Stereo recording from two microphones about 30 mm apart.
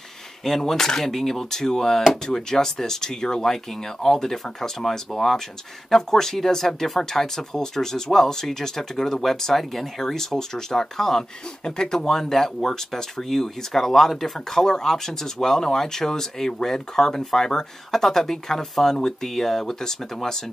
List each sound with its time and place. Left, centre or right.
0.4 s speech: centre
4.0 s speech: centre
12.1 s speech: centre